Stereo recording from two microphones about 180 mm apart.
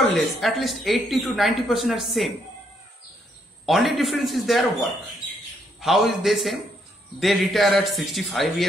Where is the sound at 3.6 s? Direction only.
Centre (ahead or behind).